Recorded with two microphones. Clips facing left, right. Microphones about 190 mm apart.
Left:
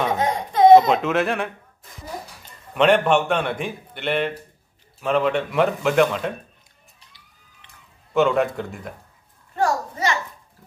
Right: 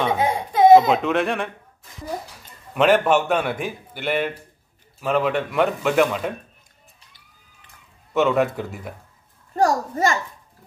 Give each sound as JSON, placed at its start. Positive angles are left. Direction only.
{"t": 0.1, "sound": "a sound", "side_deg": -10}
{"t": 2.7, "sound": "a man's voice", "side_deg": -5}
{"t": 8.1, "sound": "a man's voice", "side_deg": 0}
{"t": 9.6, "sound": "a child's voice", "side_deg": -45}